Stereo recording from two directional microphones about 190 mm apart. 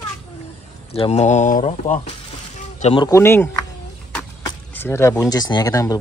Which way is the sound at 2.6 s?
40° left (ahead or behind).